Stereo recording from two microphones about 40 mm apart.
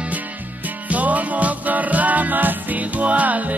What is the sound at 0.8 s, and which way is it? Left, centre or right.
Music, right.